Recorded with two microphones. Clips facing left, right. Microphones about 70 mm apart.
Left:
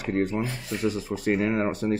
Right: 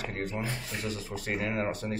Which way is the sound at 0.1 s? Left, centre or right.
Centre.